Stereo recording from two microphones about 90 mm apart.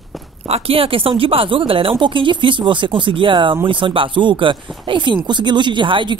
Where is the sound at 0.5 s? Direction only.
90° right.